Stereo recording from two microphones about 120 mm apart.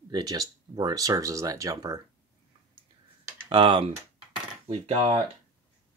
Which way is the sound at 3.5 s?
45° right (ahead or behind).